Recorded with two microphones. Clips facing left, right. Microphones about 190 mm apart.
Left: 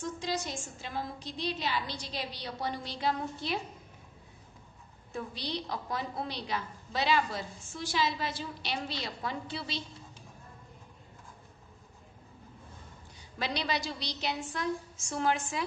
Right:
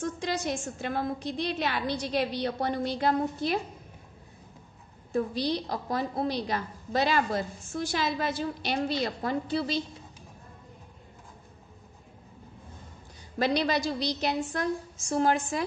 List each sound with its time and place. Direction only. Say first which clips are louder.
0.2 s a woman's voice: right 5 dB; 60° right (ahead or behind)
5.1 s a woman's voice: right 9 dB; 40° right (ahead or behind)
13.4 s a woman's voice: right 8 dB; 45° right (ahead or behind)